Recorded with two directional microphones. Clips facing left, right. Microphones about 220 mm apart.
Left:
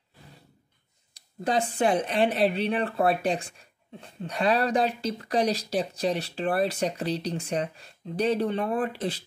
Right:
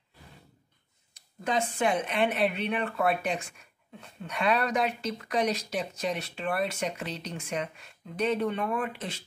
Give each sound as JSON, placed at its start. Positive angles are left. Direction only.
{"t": 1.1, "sound": "speech", "side_deg": 35}